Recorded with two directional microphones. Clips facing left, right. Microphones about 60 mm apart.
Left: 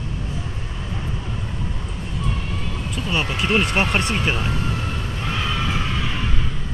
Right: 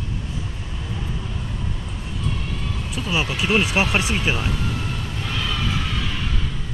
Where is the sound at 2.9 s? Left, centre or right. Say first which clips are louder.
Even; centre.